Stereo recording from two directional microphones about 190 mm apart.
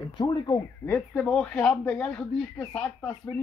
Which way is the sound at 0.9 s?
5° left (ahead or behind).